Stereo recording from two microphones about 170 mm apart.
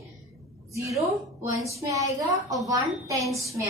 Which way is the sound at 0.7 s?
15° right (ahead or behind).